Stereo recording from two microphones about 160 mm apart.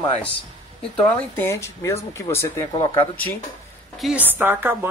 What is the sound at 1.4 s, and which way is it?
Speech, 15° left (ahead or behind).